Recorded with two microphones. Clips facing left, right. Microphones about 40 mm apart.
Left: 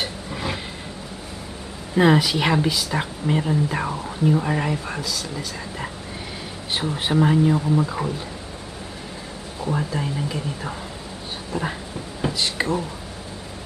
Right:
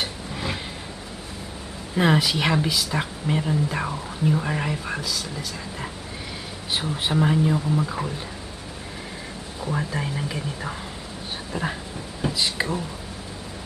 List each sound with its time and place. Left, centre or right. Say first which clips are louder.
0.0 s vehicle: left 2 dB; centre
2.0 s a woman's voice: left 3 dB; centre
6.7 s a woman's voice: left 2 dB; centre
9.9 s speech: left 2 dB; centre
12.2 s speech: left 1 dB; centre